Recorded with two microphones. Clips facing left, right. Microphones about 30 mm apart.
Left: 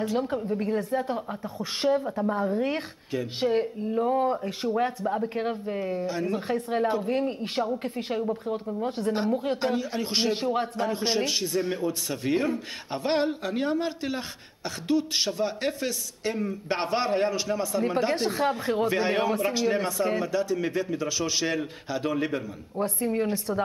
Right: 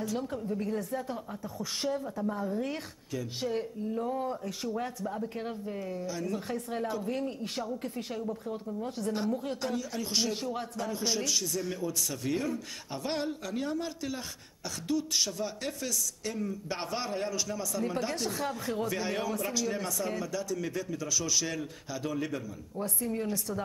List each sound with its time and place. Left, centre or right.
0.0 s speech: left